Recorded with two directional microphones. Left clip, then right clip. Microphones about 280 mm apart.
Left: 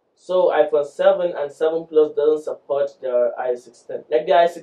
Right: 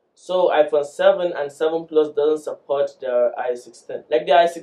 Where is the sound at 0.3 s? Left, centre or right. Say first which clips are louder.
Even; centre.